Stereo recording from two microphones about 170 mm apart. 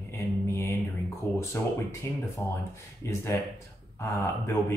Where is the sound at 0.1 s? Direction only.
15° left (ahead or behind).